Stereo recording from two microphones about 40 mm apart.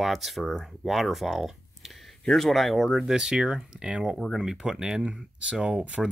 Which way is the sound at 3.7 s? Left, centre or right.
Right.